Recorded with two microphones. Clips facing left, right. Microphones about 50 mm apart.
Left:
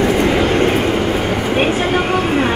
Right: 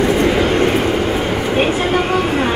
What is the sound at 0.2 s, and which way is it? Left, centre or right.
Vehicle, left.